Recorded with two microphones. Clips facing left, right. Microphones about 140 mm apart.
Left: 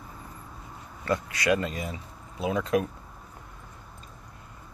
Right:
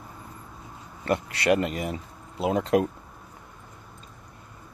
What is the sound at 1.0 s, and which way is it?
Speech, 30° right (ahead or behind).